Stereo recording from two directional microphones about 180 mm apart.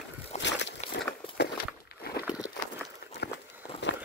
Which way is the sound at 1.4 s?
60° left (ahead or behind).